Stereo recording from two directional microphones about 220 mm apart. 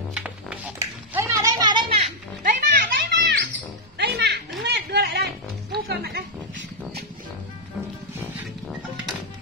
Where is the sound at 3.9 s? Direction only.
50° right (ahead or behind).